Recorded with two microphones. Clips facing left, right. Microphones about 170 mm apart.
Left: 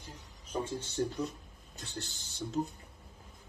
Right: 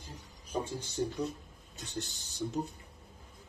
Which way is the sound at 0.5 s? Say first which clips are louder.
Even; 15° right (ahead or behind).